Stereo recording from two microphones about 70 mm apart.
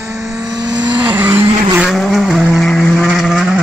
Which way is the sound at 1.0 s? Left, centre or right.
Right.